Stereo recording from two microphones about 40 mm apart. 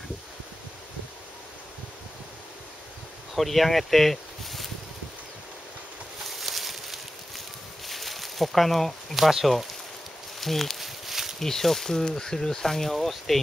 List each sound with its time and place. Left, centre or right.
3.3 s speech: centre
6.2 s a sound: centre
10.4 s speech: centre
10.8 s walk: centre
11.3 s speech: centre